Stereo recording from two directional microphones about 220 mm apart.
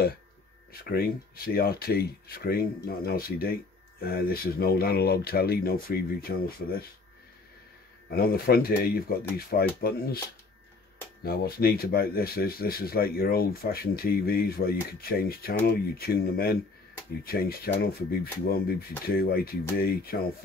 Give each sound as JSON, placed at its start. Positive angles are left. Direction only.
{"t": 0.8, "sound": "speech", "side_deg": 45}
{"t": 8.1, "sound": "speech", "side_deg": 45}
{"t": 11.2, "sound": "speech", "side_deg": 45}